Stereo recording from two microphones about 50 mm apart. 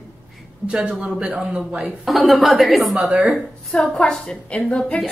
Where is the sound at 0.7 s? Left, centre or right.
Centre.